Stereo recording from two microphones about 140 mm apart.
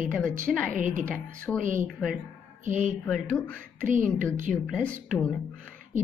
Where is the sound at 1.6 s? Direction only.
65° right (ahead or behind).